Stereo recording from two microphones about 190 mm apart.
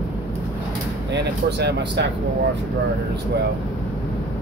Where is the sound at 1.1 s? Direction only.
60° right (ahead or behind).